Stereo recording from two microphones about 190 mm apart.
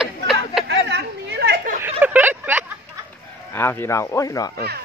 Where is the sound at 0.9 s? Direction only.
60° right (ahead or behind).